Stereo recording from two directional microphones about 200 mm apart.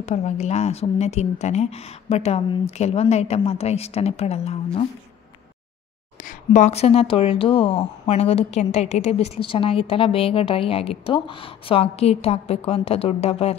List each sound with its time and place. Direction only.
0.0 s a woman's voice: 35° left (ahead or behind)
6.2 s a woman's voice: 35° left (ahead or behind)